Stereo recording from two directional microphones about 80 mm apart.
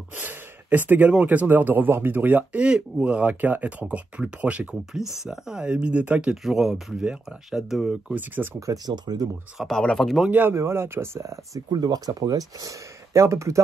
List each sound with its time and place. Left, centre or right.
0.1 s speech: right
5.1 s speech: centre
6.3 s speech: centre
8.1 s speech: right
8.5 s speech: right
8.8 s speech: right
9.6 s speech: centre
10.3 s speech: right
11.7 s speech: right